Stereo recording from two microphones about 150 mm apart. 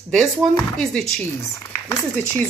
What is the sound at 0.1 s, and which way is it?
Speech, centre (ahead or behind).